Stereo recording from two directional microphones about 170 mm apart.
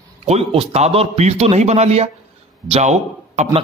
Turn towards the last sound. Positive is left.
turn(degrees=-40)  # may be behind; listen again after turning